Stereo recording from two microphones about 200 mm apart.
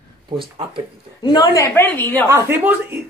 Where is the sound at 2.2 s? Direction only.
10° right (ahead or behind).